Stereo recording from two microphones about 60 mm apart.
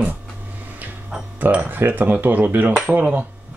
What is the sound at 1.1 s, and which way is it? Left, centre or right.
Speech, centre.